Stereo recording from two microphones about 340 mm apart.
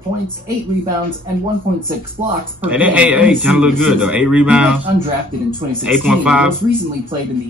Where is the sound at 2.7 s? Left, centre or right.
Centre.